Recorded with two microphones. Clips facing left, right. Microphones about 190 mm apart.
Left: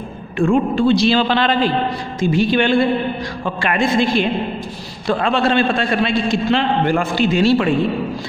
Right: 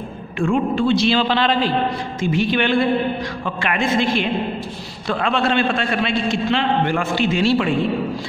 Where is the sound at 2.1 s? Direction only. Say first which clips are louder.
Left 4 dB; 35° left (ahead or behind).